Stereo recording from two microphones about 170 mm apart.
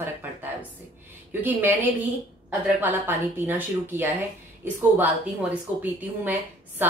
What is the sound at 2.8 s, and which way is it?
A woman's voice, 10° right (ahead or behind).